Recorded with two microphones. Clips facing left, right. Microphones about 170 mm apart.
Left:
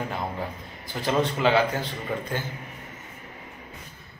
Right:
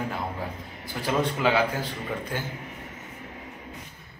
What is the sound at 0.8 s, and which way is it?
Speech, 10° right (ahead or behind).